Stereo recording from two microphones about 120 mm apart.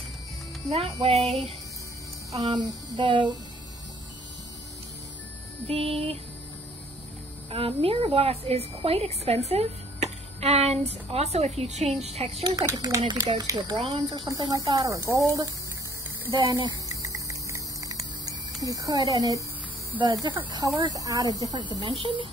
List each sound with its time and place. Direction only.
0.7 s a woman's voice: 55° right (ahead or behind)
2.5 s speech: 40° right (ahead or behind)
5.7 s a woman's voice: 55° right (ahead or behind)
7.5 s a woman's voice: 55° right (ahead or behind)
12.4 s speech: 30° right (ahead or behind)
13.8 s a woman's voice: 55° right (ahead or behind)
14.1 s speech: 35° right (ahead or behind)
16.6 s a sound: 30° right (ahead or behind)
20.0 s speech: 40° right (ahead or behind)